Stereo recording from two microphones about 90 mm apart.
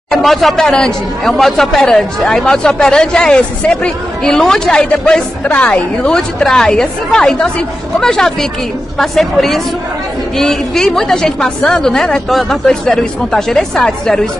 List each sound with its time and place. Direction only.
0.1 s a woman's voice: centre (ahead or behind)